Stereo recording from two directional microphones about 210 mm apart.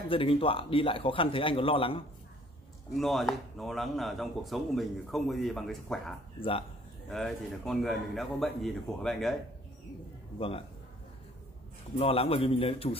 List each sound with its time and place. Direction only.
0.1 s speech: 25° left (ahead or behind)
3.0 s speech: centre (ahead or behind)
12.0 s speech: 25° left (ahead or behind)